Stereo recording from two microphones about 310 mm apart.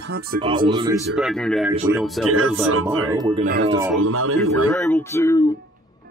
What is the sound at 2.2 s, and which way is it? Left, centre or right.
Speech, right.